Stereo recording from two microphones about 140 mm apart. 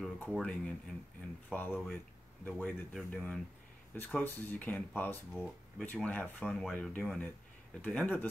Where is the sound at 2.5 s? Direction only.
5° left (ahead or behind).